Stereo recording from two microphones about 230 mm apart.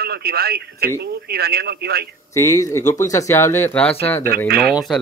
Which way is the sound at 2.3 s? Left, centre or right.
Centre.